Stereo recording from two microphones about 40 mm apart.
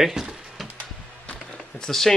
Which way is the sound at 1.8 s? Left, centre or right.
Centre.